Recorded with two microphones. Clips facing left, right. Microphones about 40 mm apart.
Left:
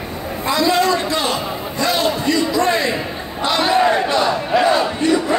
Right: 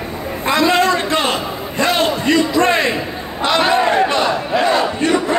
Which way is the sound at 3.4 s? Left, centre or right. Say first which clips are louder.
Right 1 dB; right.